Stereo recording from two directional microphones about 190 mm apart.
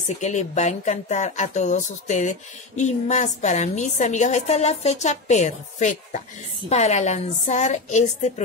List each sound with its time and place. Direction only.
0.2 s a woman's voice: 40° left (ahead or behind)